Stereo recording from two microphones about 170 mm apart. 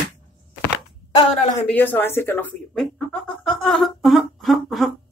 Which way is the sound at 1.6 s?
10° left (ahead or behind).